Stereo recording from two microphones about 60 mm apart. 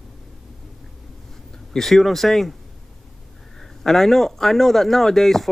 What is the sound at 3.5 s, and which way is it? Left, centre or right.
Speech, centre.